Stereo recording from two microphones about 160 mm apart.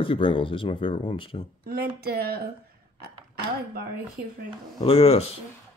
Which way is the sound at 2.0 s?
75° right (ahead or behind).